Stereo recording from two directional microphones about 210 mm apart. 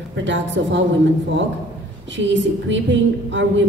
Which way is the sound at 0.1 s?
60° right (ahead or behind).